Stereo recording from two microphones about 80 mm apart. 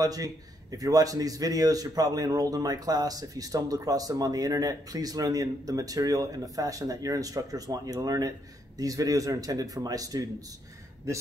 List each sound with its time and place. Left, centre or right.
0.0 s a man's voice: right
11.1 s a man's voice: right